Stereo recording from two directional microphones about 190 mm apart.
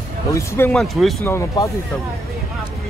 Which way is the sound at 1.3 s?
15° left (ahead or behind).